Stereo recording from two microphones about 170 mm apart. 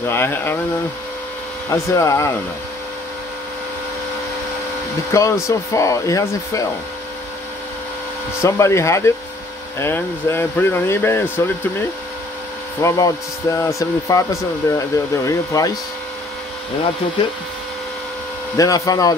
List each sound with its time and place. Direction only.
0.1 s speech: 15° left (ahead or behind)
1.7 s a man's voice: 20° left (ahead or behind)
5.1 s a man's voice: 20° left (ahead or behind)
8.4 s speech: 15° left (ahead or behind)
12.8 s a man's voice: 20° left (ahead or behind)
18.6 s a man's voice: 20° left (ahead or behind)